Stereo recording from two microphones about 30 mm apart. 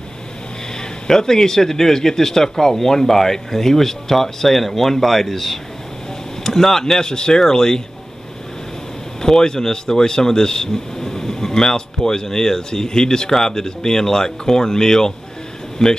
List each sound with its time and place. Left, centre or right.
0.7 s a man's voice: centre
9.2 s speech: left
15.8 s a man's voice: centre